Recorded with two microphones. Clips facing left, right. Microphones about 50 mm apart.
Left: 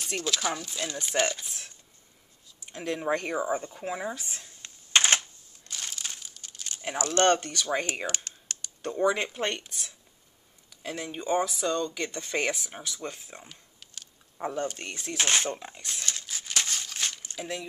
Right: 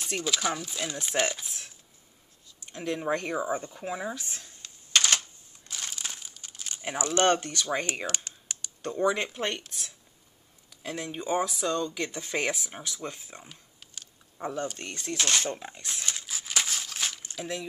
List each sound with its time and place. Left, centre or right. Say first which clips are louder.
0.0 s speech: even; centre
4.6 s a sound: left 2 dB; left
5.7 s crumpling: even; centre
7.1 s speech: left 1 dB; centre
15.1 s speech: left 1 dB; left
15.5 s speech: even; centre
16.3 s crumpling: even; centre